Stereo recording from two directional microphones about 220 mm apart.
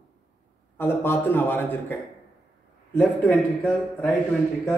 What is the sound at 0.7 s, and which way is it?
A man's voice, 10° left (ahead or behind).